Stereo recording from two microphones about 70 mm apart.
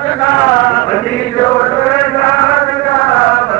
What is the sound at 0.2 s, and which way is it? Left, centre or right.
Chant, left.